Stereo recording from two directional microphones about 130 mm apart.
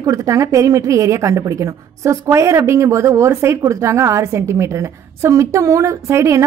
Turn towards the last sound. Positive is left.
turn(degrees=-20)  # may be behind; listen again after turning